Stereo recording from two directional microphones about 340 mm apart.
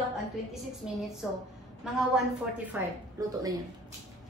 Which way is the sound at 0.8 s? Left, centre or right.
Centre.